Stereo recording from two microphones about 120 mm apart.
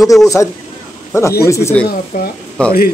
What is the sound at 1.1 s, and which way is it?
Speech, 25° left (ahead or behind).